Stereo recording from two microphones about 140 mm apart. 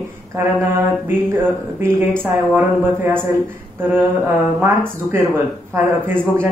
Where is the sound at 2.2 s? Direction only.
15° right (ahead or behind).